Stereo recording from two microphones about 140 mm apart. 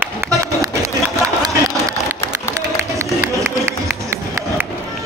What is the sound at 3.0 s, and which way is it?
Run, 20° right (ahead or behind).